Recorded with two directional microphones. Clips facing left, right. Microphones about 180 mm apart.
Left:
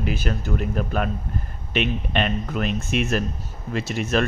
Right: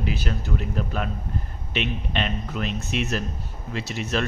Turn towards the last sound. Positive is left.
turn(degrees=50)  # may be behind; listen again after turning